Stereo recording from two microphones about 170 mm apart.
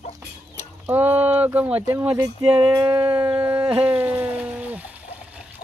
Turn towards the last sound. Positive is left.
turn(degrees=-10)  # may be behind; listen again after turning